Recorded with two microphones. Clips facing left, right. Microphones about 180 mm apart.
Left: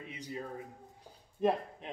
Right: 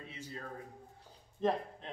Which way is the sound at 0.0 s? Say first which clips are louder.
Left 4 dB; 15° left (ahead or behind).